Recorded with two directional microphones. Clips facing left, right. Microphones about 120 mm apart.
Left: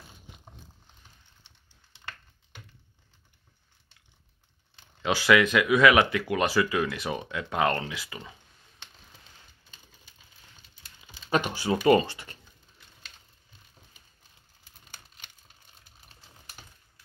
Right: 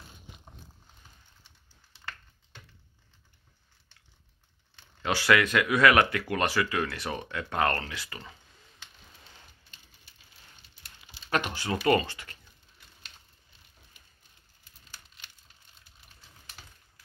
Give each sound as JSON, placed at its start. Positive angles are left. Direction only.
{"t": 4.7, "sound": "speech", "side_deg": 20}
{"t": 11.2, "sound": "speech", "side_deg": 15}
{"t": 16.6, "sound": "typewriter", "side_deg": 25}